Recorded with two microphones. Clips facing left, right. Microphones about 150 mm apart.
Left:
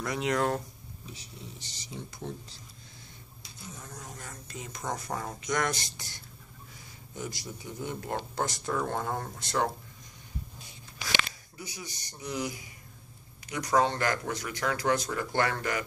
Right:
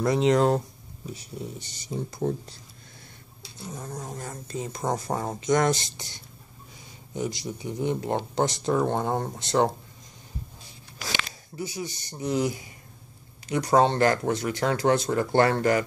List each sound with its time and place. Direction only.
0.0 s speech: 30° right (ahead or behind)
1.1 s speech: 55° right (ahead or behind)
3.6 s speech: 35° right (ahead or behind)
7.2 s speech: 20° right (ahead or behind)
11.5 s speech: 30° right (ahead or behind)